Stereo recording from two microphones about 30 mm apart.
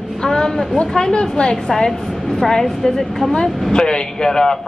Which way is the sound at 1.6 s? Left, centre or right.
Centre.